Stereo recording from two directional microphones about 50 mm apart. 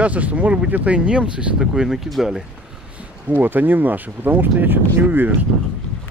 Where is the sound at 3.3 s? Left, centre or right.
Right.